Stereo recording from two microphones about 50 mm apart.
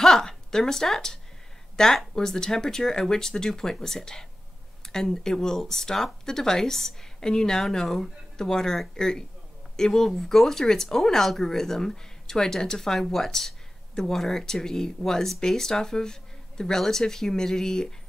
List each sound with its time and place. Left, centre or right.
0.0 s a woman's voice: centre